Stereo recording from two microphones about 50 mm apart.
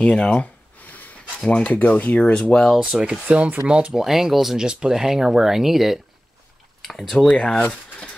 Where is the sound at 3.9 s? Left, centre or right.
Centre.